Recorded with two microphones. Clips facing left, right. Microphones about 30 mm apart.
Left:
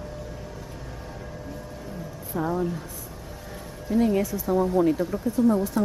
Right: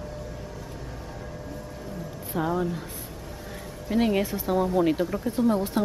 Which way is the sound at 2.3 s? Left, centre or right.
Right.